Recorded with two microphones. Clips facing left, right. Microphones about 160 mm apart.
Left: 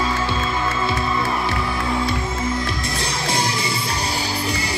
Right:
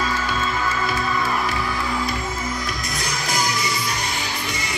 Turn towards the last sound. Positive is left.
turn(degrees=30)  # may be behind; listen again after turning